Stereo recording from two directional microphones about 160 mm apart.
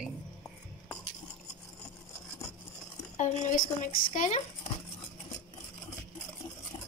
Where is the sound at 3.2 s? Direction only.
45° left (ahead or behind).